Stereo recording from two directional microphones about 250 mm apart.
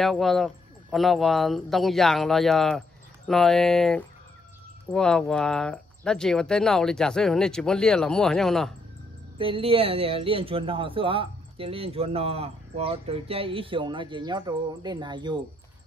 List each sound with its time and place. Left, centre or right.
0.0 s speech: centre
9.4 s speech: right